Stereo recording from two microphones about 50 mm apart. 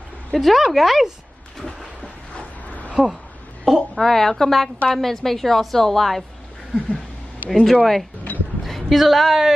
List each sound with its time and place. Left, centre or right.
0.3 s a woman's voice: centre
1.7 s a sound: left
3.6 s a woman's voice: centre
7.4 s a woman's voice: centre
8.3 s a sound: left
8.6 s a woman's voice: centre